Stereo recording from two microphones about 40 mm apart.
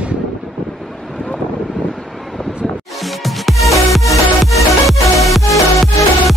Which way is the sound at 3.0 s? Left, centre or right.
Centre.